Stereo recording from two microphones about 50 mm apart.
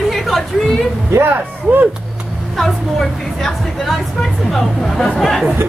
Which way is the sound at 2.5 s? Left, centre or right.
Centre.